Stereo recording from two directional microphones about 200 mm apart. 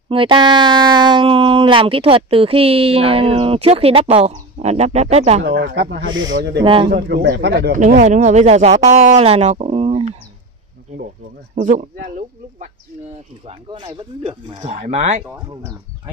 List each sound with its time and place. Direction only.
0.1 s speech: 25° right (ahead or behind)
5.4 s speech: 55° right (ahead or behind)
6.6 s speech: 25° right (ahead or behind)
6.9 s speech: 55° right (ahead or behind)
7.7 s speech: 40° right (ahead or behind)
11.6 s speech: 40° right (ahead or behind)
13.5 s speech: 25° right (ahead or behind)
14.6 s speech: 35° right (ahead or behind)